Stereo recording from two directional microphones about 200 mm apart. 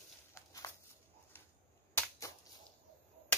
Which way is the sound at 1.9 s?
15° left (ahead or behind).